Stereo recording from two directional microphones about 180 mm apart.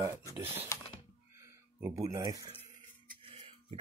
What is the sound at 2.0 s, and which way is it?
Speech, 20° right (ahead or behind).